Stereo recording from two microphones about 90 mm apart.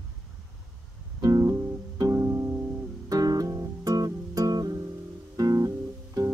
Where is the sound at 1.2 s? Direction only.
40° right (ahead or behind).